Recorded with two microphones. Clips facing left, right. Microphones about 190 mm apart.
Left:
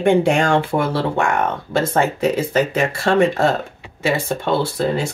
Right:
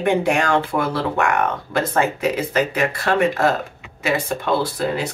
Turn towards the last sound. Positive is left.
turn(degrees=30)  # may be behind; listen again after turning